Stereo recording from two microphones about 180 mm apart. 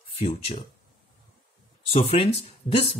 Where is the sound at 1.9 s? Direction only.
30° left (ahead or behind).